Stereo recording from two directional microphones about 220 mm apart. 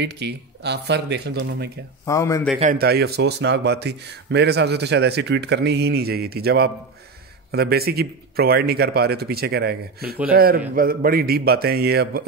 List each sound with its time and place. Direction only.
0.0 s speech: 50° right (ahead or behind)
2.0 s a man's voice: 15° left (ahead or behind)
2.6 s speech: 40° right (ahead or behind)